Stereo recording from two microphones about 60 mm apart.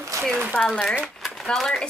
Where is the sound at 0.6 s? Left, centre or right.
Centre.